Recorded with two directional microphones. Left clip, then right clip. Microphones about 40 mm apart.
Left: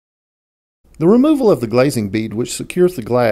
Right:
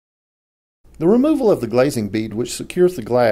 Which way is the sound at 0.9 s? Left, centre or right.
Left.